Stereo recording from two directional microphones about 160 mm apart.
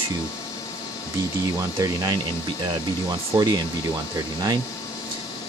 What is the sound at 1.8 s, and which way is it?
Speech, 25° right (ahead or behind).